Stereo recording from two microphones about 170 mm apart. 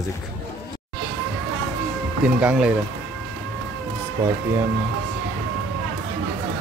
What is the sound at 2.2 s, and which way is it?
Speech, 5° right (ahead or behind).